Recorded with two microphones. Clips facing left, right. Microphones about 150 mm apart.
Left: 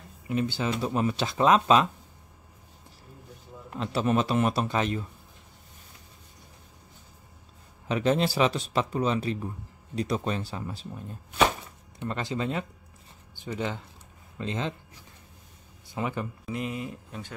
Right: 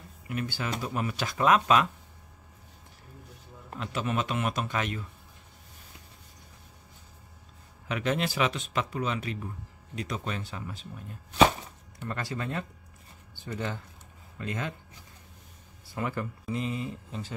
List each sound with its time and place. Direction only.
0.3 s speech: 25° left (ahead or behind)
3.8 s speech: 35° left (ahead or behind)
7.9 s speech: 30° left (ahead or behind)
12.0 s speech: 20° left (ahead or behind)
15.9 s speech: 20° left (ahead or behind)
16.4 s speech: 5° left (ahead or behind)